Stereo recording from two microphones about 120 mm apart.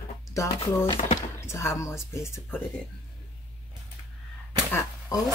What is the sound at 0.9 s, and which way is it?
Speech, 75° left (ahead or behind).